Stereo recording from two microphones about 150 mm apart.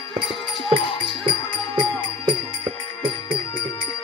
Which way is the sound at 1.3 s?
30° right (ahead or behind).